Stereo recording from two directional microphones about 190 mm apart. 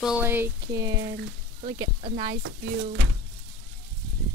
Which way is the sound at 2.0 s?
35° right (ahead or behind).